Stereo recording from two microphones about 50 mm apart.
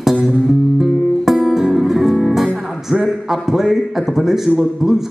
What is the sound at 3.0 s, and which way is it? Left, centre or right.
A man's voice, centre.